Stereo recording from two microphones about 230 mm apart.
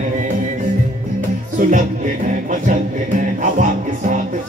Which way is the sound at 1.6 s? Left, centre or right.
Right.